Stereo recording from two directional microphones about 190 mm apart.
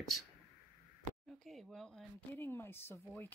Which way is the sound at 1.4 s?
Centre (ahead or behind).